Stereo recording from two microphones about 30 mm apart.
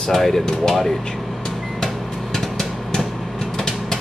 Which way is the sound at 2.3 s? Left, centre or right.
Centre.